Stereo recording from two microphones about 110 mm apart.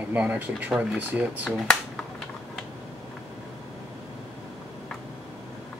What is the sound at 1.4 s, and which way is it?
Speech, 5° left (ahead or behind).